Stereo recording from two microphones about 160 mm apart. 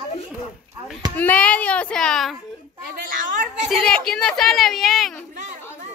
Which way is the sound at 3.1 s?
55° right (ahead or behind).